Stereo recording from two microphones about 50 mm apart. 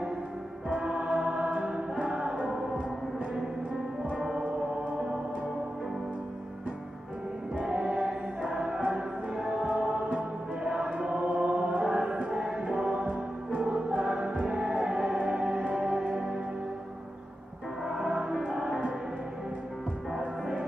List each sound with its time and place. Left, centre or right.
0.7 s music: centre
4.2 s music: centre
4.9 s gong: right
7.6 s music: right
10.6 s chant: centre
12.6 s music: right
17.8 s music: centre
20.2 s music: centre